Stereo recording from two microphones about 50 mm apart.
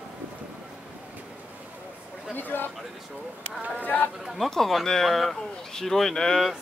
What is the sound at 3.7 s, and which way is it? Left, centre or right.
Speech, left.